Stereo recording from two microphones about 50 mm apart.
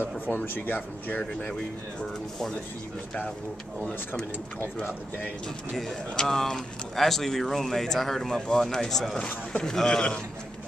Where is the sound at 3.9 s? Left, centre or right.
Left.